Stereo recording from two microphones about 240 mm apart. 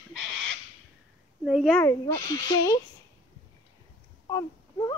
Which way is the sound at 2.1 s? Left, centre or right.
Centre.